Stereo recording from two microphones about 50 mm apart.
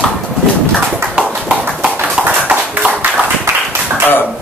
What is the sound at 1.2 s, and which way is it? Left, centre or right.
Clip-clop, centre.